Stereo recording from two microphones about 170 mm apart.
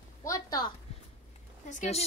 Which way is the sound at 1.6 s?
45° left (ahead or behind).